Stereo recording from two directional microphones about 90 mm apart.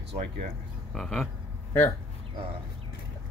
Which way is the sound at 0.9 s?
5° left (ahead or behind).